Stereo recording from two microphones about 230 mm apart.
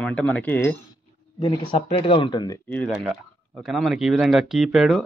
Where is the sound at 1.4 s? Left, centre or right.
Left.